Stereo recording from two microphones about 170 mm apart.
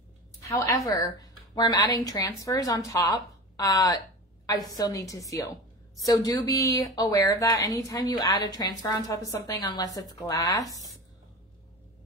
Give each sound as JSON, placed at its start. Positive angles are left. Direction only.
{"t": 0.4, "sound": "a woman's voice", "side_deg": 20}